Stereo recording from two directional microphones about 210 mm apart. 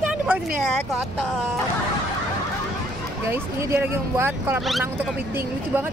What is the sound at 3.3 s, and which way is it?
Speech, 10° right (ahead or behind).